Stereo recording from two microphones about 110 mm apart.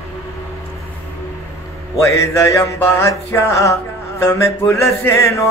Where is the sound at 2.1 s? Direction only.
25° left (ahead or behind).